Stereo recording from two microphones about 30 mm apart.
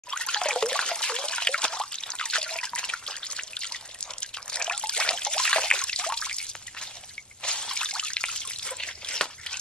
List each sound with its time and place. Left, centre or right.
0.1 s trickle: left
7.4 s drip: left